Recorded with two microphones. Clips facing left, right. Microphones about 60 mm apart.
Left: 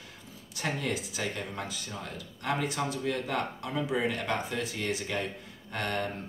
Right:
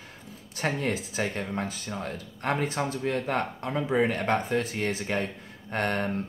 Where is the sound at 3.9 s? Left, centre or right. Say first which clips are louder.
Right 7 dB; right.